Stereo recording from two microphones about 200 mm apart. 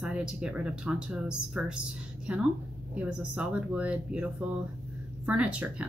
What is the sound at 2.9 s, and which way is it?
Speech, 5° right (ahead or behind).